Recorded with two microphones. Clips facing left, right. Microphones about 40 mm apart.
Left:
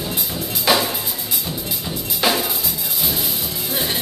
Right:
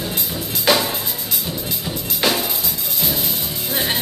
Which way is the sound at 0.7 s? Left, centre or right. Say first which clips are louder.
Right 1 dB; centre.